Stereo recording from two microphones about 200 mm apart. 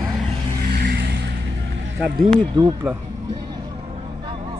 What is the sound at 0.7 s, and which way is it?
Vehicle, 55° right (ahead or behind).